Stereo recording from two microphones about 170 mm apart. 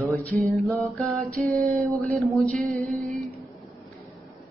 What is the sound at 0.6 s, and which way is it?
Speech, centre (ahead or behind).